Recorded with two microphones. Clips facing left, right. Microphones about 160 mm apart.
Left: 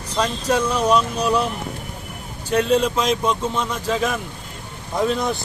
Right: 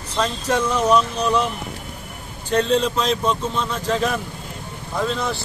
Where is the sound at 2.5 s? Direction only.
10° left (ahead or behind).